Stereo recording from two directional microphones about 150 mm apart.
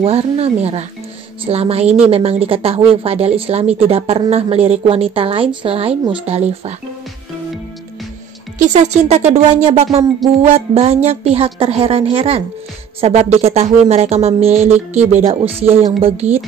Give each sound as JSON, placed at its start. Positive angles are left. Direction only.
{"t": 0.0, "sound": "speech", "side_deg": -40}
{"t": 8.5, "sound": "speech", "side_deg": -50}